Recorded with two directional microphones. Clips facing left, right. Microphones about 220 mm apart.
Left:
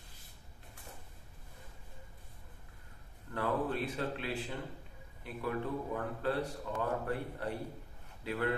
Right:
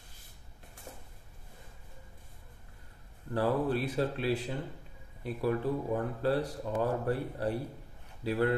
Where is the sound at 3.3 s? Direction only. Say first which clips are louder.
Right 5 dB; 35° right (ahead or behind).